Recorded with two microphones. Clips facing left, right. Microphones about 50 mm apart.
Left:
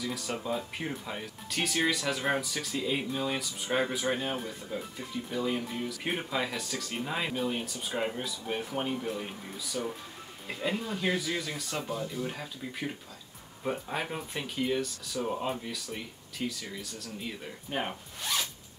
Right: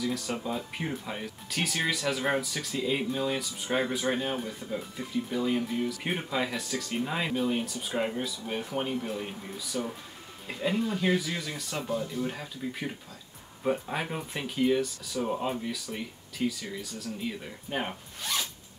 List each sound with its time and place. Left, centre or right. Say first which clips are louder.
0.0 s speech: right 3 dB; centre